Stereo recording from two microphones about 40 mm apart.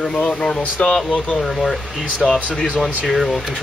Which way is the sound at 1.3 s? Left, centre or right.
Centre.